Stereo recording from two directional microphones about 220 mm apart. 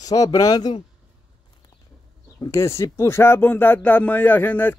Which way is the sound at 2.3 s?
15° left (ahead or behind).